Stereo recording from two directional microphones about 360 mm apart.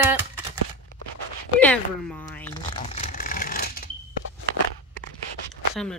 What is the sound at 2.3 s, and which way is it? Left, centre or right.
Shuffling cards, centre.